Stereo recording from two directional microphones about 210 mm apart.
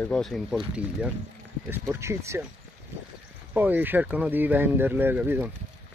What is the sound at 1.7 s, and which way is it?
Speech, 10° right (ahead or behind).